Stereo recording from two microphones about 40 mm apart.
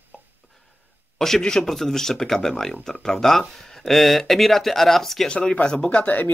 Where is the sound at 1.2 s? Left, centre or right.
Centre.